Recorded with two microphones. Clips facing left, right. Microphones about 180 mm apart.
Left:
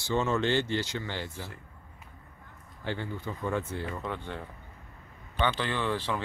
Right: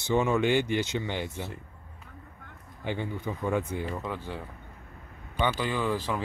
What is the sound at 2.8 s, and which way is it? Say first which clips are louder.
Speech: right 2 dB; 15° right (ahead or behind).